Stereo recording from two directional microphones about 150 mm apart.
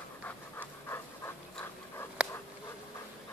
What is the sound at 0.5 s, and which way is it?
Pant, 15° left (ahead or behind).